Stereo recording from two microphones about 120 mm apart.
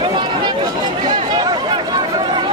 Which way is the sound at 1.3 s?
40° right (ahead or behind).